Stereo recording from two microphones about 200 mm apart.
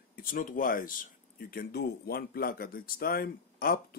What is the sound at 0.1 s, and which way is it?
Speech, 45° left (ahead or behind).